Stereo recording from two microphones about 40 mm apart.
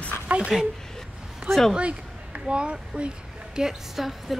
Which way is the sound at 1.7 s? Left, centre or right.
Right.